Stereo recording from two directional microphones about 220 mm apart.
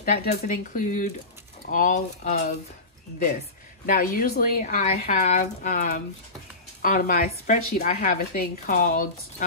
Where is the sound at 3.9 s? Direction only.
40° left (ahead or behind).